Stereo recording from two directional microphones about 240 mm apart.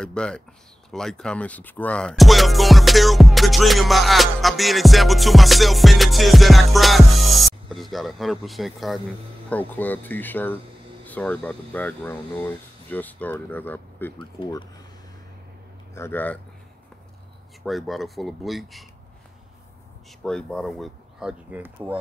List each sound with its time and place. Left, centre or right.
0.0 s speech: centre
14.1 s speech: centre
15.9 s speech: centre
17.6 s speech: centre
20.2 s speech: centre